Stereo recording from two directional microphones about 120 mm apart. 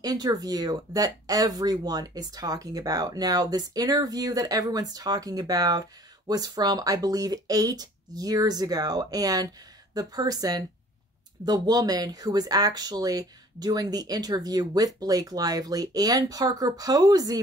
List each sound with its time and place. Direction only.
0.0 s speech: 30° right (ahead or behind)